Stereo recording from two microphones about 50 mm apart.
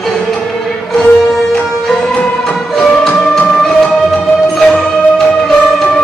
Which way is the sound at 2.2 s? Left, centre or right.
Centre.